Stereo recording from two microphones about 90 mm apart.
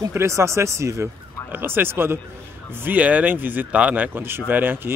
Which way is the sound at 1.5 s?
25° right (ahead or behind).